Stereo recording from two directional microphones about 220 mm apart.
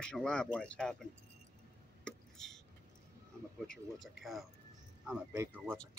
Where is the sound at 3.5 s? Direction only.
Centre (ahead or behind).